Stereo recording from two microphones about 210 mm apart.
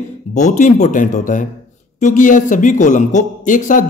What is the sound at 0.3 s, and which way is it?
A man's voice, 35° left (ahead or behind).